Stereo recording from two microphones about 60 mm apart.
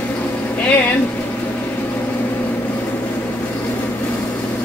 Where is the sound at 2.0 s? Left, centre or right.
Left.